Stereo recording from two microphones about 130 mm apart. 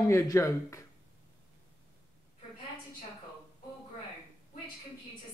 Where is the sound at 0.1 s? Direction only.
25° left (ahead or behind).